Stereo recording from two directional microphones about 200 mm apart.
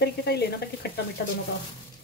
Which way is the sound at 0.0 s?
55° left (ahead or behind).